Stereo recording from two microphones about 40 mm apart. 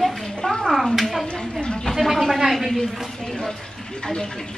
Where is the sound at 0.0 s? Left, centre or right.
Centre.